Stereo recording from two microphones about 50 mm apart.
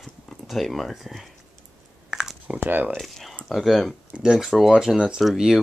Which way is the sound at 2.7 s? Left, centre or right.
Right.